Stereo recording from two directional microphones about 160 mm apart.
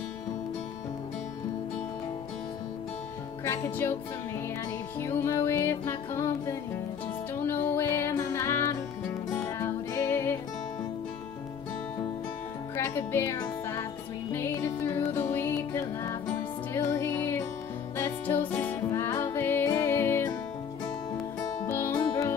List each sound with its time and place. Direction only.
3.4 s music: 15° left (ahead or behind)
5.0 s music: 15° left (ahead or behind)
12.7 s music: 15° left (ahead or behind)
21.4 s music: 10° left (ahead or behind)